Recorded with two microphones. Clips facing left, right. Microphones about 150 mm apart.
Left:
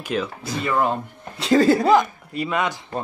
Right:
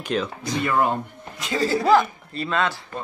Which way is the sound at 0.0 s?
5° left (ahead or behind).